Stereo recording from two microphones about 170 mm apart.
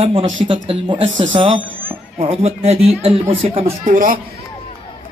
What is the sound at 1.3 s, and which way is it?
A man's voice, 30° right (ahead or behind).